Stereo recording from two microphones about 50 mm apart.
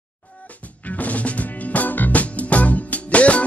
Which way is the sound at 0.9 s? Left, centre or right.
Left.